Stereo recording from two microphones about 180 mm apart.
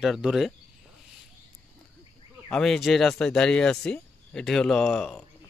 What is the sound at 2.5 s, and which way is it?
Speech, centre (ahead or behind).